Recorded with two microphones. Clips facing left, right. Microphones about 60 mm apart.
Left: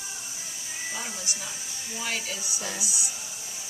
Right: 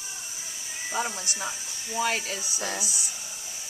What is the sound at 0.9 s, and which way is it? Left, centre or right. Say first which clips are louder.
Speech: right 10 dB; right.